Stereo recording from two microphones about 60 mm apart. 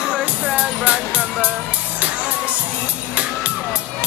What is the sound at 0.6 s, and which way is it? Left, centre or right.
Music, centre.